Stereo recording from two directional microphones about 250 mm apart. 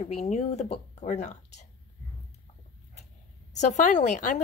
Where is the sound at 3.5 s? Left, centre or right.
Left.